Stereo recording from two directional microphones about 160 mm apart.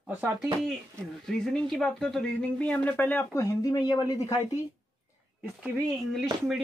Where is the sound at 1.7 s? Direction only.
5° left (ahead or behind); by 4.1 s 25° left (ahead or behind).